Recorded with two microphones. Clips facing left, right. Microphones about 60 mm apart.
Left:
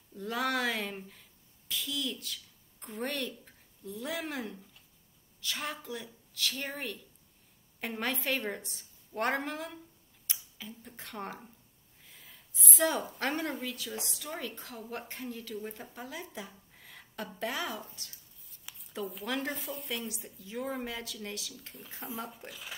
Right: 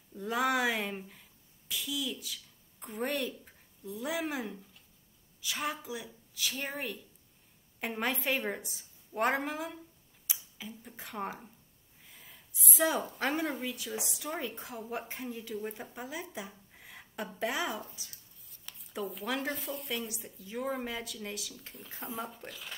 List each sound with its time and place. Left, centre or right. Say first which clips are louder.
0.1 s a woman's voice: right 2 dB; centre
18.5 s speech: right 1 dB; centre